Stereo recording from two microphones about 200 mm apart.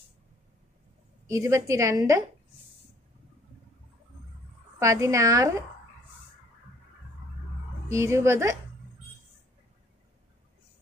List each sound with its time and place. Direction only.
1.3 s a woman's voice: 15° right (ahead or behind)
4.7 s a woman's voice: 15° right (ahead or behind)
7.9 s a woman's voice: 15° right (ahead or behind)